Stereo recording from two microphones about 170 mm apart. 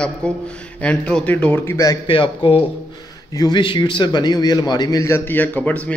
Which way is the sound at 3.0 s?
20° left (ahead or behind).